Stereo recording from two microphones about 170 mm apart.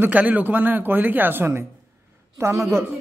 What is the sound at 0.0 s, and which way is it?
A woman's voice, 10° right (ahead or behind).